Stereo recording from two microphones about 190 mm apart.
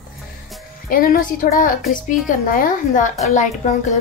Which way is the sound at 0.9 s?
50° left (ahead or behind).